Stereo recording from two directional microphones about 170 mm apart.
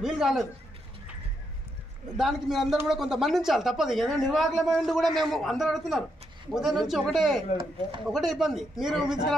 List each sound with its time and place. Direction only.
0.0 s speech: centre (ahead or behind)
2.1 s speech: centre (ahead or behind)